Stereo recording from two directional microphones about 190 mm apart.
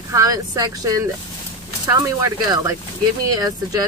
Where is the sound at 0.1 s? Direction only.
20° right (ahead or behind).